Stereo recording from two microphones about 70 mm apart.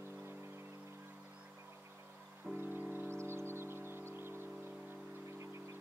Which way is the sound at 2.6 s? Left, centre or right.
Right.